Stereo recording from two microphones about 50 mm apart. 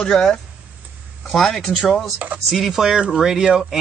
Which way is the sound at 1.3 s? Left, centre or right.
Centre.